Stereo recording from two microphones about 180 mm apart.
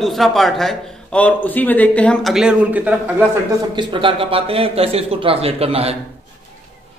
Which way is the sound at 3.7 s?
30° right (ahead or behind).